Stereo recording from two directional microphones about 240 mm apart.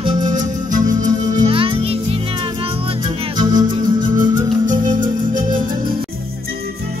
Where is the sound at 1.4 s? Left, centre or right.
Right.